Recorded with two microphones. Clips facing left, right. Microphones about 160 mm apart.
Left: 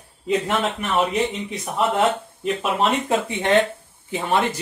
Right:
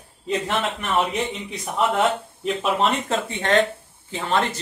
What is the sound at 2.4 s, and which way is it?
Speech, 5° left (ahead or behind).